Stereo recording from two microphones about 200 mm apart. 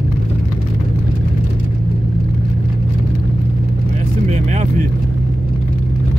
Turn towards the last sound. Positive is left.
turn(degrees=-35)  # may be behind; listen again after turning